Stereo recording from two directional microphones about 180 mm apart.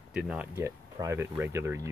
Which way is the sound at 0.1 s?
5° right (ahead or behind).